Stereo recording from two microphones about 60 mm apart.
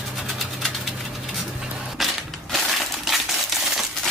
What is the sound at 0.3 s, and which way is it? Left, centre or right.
Vehicle, centre.